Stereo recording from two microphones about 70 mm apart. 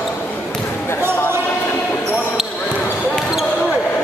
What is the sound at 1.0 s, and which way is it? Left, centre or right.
Basketball bounce, right.